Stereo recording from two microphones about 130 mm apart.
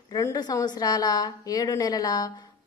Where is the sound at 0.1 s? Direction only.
30° left (ahead or behind).